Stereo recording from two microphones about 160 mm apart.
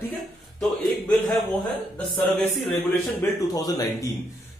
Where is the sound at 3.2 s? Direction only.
25° left (ahead or behind).